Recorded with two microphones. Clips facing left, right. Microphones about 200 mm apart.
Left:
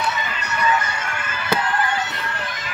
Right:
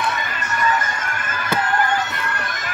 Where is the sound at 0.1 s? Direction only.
50° right (ahead or behind).